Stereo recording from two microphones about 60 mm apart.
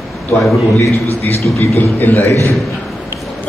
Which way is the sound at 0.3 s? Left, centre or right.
Left.